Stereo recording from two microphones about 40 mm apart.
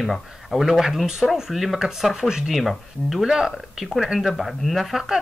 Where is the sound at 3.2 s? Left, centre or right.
Centre.